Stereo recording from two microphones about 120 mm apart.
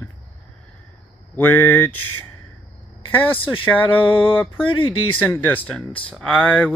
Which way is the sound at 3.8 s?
45° left (ahead or behind).